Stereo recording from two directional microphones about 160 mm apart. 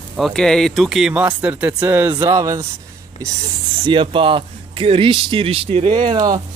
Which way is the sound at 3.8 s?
30° right (ahead or behind).